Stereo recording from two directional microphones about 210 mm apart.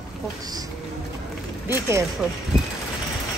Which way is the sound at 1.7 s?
10° right (ahead or behind).